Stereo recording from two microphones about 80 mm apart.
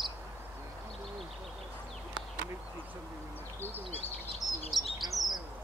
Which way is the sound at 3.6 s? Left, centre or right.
Left.